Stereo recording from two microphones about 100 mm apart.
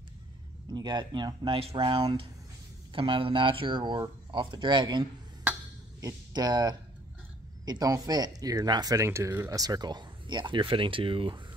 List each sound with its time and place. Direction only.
0.7 s speech: 45° right (ahead or behind); by 9.6 s 30° right (ahead or behind)
9.6 s speech: 45° right (ahead or behind); by 11.4 s 60° right (ahead or behind)